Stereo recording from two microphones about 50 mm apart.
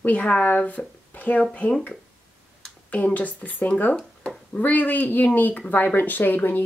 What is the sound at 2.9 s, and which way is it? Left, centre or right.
A woman's voice, left.